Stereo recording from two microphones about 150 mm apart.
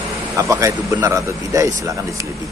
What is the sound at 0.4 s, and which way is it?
Speech, 20° right (ahead or behind).